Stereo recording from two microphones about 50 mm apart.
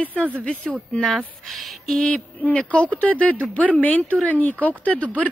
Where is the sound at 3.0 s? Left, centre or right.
Left.